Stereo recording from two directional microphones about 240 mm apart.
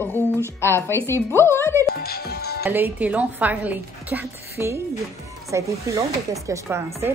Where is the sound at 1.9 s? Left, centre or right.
Left.